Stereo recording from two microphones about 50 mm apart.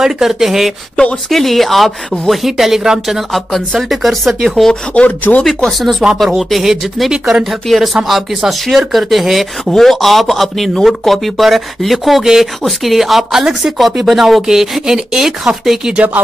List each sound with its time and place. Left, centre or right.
0.0 s speech: centre
4.9 s speech: left
5.4 s speech: centre
7.6 s speech: centre